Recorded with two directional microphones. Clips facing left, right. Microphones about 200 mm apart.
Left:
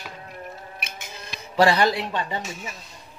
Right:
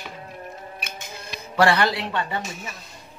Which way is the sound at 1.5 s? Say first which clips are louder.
Left 1 dB; 20° left (ahead or behind).